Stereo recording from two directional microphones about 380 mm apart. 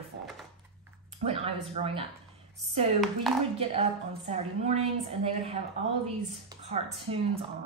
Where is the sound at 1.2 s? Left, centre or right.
Centre.